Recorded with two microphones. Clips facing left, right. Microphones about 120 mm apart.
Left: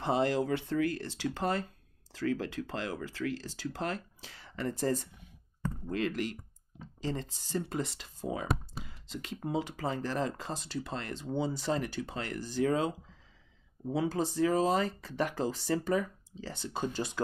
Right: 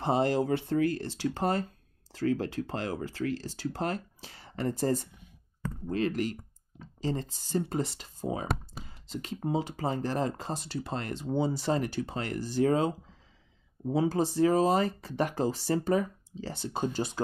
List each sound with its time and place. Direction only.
0.0 s speech: 35° right (ahead or behind)
10.8 s speech: 45° right (ahead or behind)
13.8 s speech: 10° right (ahead or behind)
14.2 s speech: 35° right (ahead or behind)
14.6 s speech: 45° right (ahead or behind)